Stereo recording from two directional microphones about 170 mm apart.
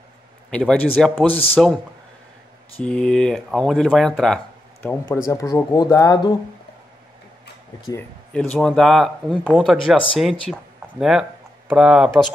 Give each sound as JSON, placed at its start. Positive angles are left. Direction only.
{"t": 0.5, "sound": "speech", "side_deg": 5}
{"t": 2.8, "sound": "speech", "side_deg": 5}
{"t": 4.8, "sound": "speech", "side_deg": 15}
{"t": 8.5, "sound": "speech", "side_deg": 0}